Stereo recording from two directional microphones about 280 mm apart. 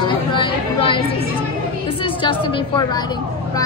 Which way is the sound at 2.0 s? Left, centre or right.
Centre.